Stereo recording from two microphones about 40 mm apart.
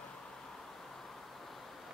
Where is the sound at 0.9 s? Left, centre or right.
Centre.